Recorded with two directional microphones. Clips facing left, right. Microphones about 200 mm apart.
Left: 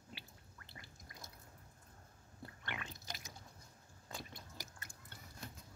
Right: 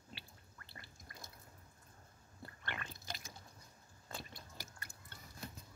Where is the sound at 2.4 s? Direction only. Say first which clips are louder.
Even; 15° left (ahead or behind).